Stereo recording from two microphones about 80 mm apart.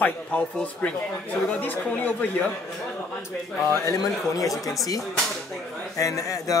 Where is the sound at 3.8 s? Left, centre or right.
Left.